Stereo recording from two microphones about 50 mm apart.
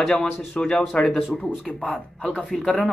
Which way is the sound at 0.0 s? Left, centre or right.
Centre.